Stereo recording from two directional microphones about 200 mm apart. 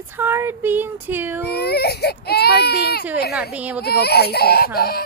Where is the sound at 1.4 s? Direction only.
55° left (ahead or behind).